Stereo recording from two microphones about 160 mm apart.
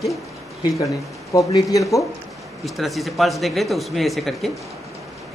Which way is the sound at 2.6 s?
Centre (ahead or behind).